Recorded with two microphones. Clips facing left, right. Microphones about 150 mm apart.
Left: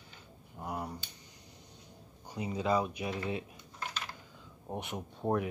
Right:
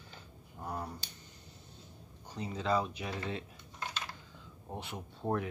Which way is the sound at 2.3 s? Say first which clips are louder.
Left 2 dB; 10° left (ahead or behind).